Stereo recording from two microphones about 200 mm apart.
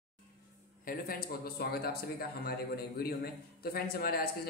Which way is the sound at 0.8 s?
45° left (ahead or behind).